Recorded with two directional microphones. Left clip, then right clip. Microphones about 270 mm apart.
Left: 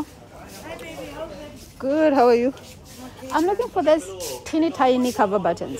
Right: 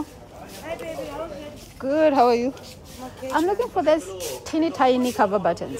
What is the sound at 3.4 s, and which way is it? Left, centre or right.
Speech, centre.